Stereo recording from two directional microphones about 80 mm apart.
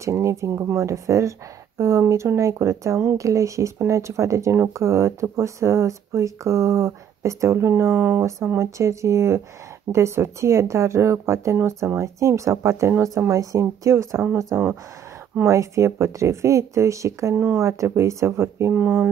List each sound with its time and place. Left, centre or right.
0.0 s speech: right
8.5 s speech: right
18.7 s speech: right